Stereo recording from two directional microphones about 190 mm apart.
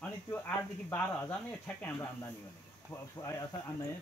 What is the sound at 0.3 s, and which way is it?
Speech, 15° left (ahead or behind).